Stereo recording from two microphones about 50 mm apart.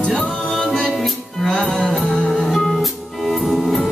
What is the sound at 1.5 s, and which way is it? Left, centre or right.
Music, centre.